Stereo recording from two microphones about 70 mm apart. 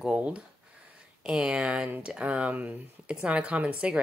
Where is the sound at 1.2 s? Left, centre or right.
Centre.